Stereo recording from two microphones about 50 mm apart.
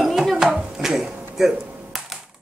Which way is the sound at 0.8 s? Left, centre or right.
Centre.